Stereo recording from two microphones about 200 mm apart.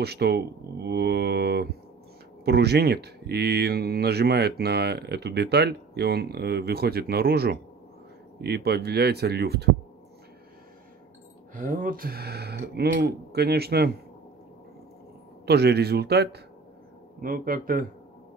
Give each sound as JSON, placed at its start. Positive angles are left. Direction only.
{"t": 0.0, "sound": "speech", "side_deg": -55}
{"t": 0.8, "sound": "mantra", "side_deg": -55}
{"t": 2.4, "sound": "speech", "side_deg": -55}
{"t": 11.5, "sound": "speech", "side_deg": -40}
{"t": 15.4, "sound": "speech", "side_deg": -55}